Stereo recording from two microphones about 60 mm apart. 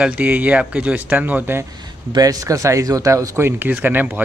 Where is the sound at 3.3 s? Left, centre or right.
Right.